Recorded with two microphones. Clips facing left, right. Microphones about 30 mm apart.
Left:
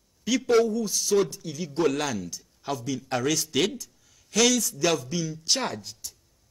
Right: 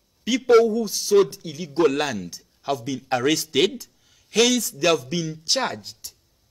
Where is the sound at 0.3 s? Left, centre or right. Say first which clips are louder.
Right 5 dB; right.